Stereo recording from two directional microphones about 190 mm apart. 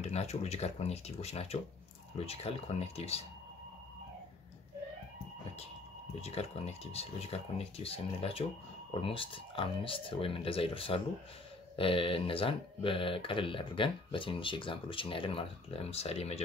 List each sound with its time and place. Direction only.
0.1 s speech: 35° left (ahead or behind)
6.2 s speech: 35° left (ahead or behind)